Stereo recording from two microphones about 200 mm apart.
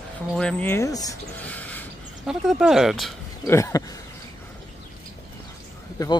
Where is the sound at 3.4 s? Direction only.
15° left (ahead or behind).